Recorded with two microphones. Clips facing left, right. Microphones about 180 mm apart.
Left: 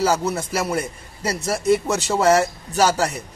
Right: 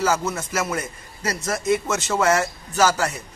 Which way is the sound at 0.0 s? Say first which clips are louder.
Left 2 dB; 35° left (ahead or behind).